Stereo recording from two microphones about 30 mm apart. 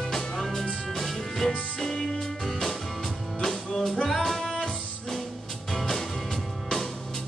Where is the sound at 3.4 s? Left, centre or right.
Centre.